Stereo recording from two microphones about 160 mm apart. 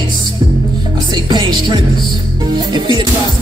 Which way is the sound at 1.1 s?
30° right (ahead or behind).